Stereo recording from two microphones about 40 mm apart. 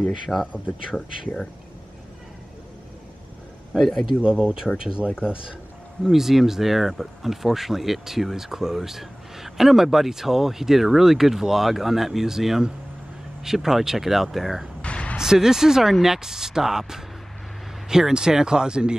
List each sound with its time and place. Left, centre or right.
0.3 s speech: centre
3.7 s speech: centre
4.2 s speech: right
6.1 s speech: centre
14.8 s a sound: left
15.1 s speech: centre